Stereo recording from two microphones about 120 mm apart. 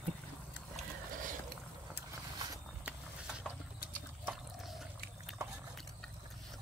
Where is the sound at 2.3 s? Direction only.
35° right (ahead or behind).